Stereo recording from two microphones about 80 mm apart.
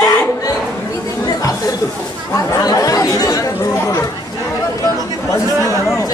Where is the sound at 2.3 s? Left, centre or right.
Left.